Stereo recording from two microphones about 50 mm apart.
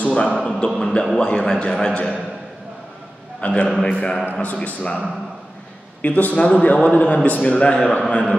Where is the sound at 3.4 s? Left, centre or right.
Left.